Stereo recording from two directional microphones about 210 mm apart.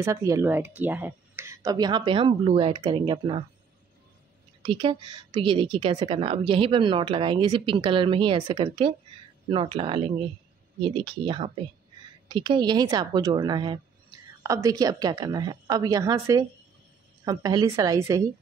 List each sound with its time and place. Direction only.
0.0 s speech: 15° right (ahead or behind)
4.6 s a woman's voice: 20° right (ahead or behind)